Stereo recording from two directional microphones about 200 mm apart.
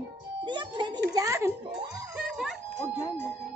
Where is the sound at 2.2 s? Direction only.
Centre (ahead or behind).